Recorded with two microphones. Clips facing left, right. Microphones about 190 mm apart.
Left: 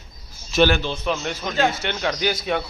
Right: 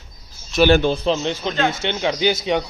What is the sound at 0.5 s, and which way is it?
Speech, centre (ahead or behind).